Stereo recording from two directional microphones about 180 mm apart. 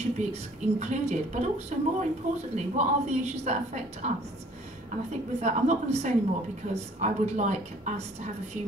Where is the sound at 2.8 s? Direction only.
40° right (ahead or behind).